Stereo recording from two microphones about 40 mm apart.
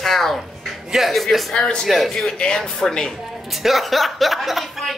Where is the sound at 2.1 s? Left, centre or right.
Centre.